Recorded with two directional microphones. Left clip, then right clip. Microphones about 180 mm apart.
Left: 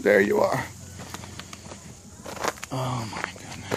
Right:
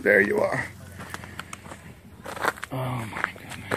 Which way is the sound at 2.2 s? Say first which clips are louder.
Right 2 dB; 10° left (ahead or behind).